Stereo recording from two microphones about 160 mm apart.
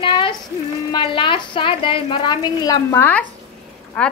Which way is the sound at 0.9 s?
30° left (ahead or behind).